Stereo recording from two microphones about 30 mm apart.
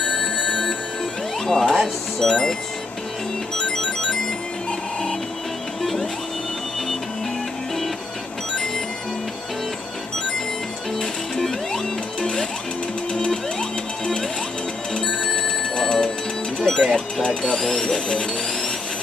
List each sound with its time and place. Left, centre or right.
1.4 s speech: centre
3.5 s music: centre
5.8 s music: centre
11.3 s music: centre
15.3 s telephone bell ringing: centre
16.5 s music: centre
17.7 s speech: left